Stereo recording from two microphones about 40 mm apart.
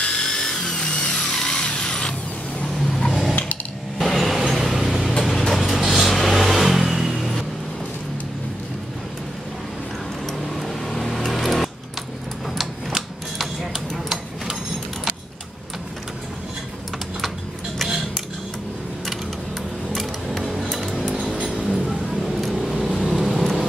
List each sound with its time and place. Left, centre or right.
0.0 s tools: centre
1.1 s vehicle: centre
1.7 s drill: left
2.7 s vehicle: centre
3.1 s mechanisms: centre
4.0 s train: centre
5.5 s music: centre
5.8 s vehicle: centre
10.5 s a sound: centre
12.5 s typewriter: centre
13.7 s tick-tock: centre
21.0 s music: centre
21.6 s vehicle: centre